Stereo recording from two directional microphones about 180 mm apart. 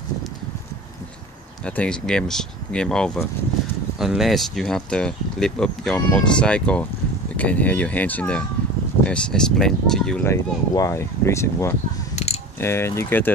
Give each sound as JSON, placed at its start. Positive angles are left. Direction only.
{"t": 1.6, "sound": "speech", "side_deg": 5}
{"t": 10.2, "sound": "speech", "side_deg": 15}
{"t": 12.2, "sound": "mechanisms", "side_deg": 40}
{"t": 12.5, "sound": "speech", "side_deg": 15}